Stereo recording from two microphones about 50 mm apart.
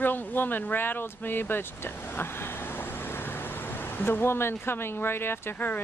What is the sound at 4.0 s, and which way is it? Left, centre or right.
Speech, left.